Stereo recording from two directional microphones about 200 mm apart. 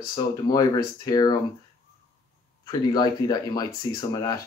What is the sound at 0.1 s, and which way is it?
Speech, 20° left (ahead or behind).